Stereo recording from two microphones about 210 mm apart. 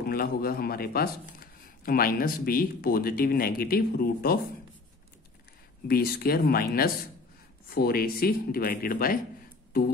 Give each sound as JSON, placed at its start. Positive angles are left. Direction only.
{"t": 0.0, "sound": "speech", "side_deg": 45}
{"t": 5.9, "sound": "speech", "side_deg": 45}